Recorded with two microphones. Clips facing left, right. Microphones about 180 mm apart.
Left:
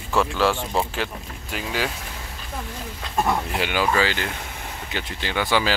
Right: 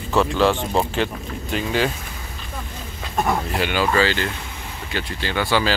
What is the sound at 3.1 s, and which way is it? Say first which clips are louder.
Speech: right 1 dB; 5° right (ahead or behind).